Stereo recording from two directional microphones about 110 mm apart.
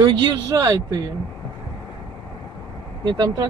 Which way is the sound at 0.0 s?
40° right (ahead or behind).